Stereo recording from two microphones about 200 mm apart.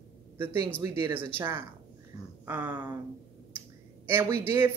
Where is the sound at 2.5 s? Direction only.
15° right (ahead or behind).